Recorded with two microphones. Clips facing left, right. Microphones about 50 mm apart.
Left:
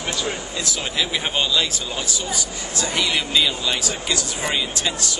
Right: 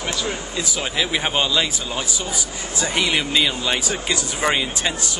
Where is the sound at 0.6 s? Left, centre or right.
Centre.